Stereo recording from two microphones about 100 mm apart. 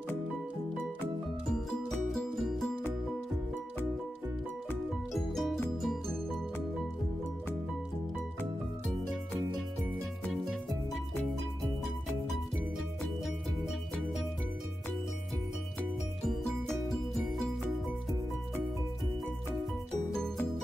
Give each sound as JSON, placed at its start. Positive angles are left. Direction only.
{"t": 1.5, "sound": "music", "side_deg": 5}
{"t": 5.1, "sound": "music", "side_deg": 0}
{"t": 16.3, "sound": "music", "side_deg": 0}